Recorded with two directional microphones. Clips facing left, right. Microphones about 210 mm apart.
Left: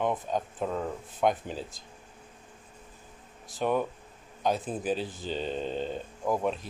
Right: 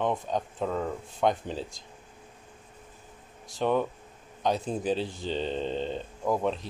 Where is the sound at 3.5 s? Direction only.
5° left (ahead or behind).